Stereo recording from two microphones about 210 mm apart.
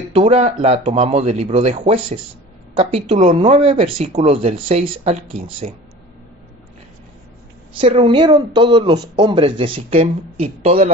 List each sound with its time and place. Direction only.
0.1 s speech: 30° right (ahead or behind)
7.7 s speech: 25° right (ahead or behind)